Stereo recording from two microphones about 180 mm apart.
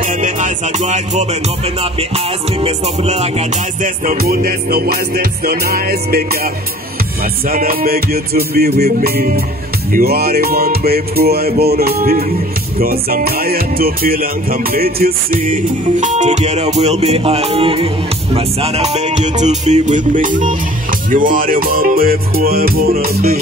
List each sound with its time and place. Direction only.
0.2 s music: 45° right (ahead or behind)